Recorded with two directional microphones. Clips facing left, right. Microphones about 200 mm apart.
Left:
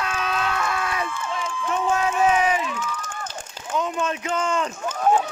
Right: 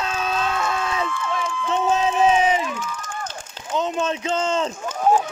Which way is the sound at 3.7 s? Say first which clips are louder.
Right 2 dB; 25° right (ahead or behind).